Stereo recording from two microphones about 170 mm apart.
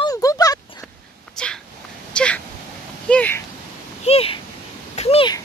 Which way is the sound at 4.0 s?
35° left (ahead or behind).